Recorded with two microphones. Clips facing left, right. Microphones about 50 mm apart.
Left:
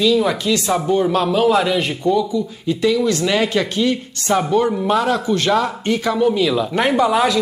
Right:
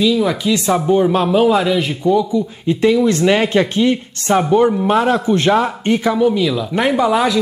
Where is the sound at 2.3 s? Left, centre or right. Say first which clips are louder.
Right 3 dB; right.